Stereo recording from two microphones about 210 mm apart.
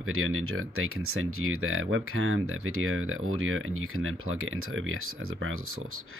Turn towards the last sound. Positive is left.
turn(degrees=-85)